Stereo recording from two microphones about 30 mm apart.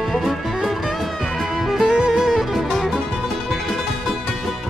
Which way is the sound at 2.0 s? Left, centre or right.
Centre.